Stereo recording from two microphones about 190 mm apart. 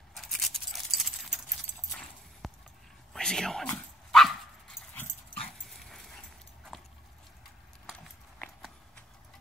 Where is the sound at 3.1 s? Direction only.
5° left (ahead or behind).